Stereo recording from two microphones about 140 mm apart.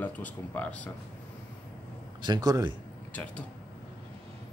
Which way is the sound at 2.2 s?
30° right (ahead or behind).